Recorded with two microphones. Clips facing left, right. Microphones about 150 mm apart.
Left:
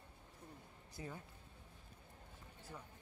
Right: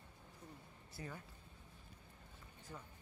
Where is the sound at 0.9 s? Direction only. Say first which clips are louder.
Left 1 dB; 20° left (ahead or behind).